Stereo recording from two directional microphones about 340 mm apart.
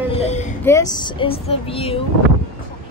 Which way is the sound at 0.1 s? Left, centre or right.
Centre.